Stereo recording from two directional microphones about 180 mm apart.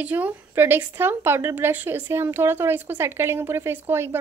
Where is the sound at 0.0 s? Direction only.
10° right (ahead or behind).